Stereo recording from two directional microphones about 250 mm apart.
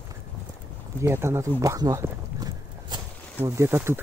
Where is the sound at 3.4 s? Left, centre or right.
Centre.